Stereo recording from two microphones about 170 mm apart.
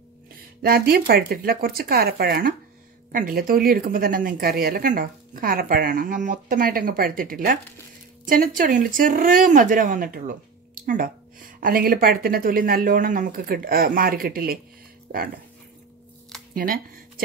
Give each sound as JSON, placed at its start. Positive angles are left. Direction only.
{"t": 0.3, "sound": "speech", "side_deg": -65}
{"t": 16.5, "sound": "speech", "side_deg": -55}